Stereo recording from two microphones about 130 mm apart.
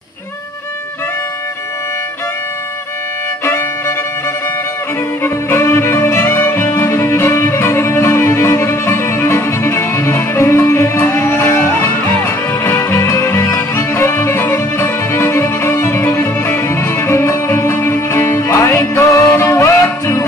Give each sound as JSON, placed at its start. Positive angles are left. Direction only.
{"t": 3.4, "sound": "violin", "side_deg": 20}
{"t": 5.2, "sound": "music", "side_deg": 20}